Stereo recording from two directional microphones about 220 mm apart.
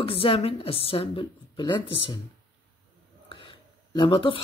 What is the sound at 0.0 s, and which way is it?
Speech, 25° left (ahead or behind).